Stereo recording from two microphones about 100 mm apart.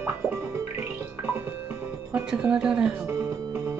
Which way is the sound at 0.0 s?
20° right (ahead or behind).